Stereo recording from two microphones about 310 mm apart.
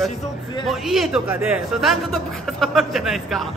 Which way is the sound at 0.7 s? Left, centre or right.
Centre.